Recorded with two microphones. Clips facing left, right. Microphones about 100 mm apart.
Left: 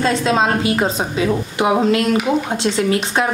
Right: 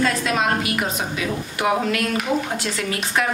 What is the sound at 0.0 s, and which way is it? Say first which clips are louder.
A woman's voice: left 4 dB; 25° left (ahead or behind).